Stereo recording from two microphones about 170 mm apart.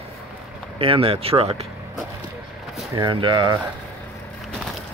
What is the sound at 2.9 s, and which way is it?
Speech, 25° right (ahead or behind).